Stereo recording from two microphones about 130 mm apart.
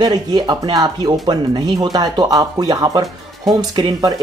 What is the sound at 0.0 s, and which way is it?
Speech, 30° right (ahead or behind).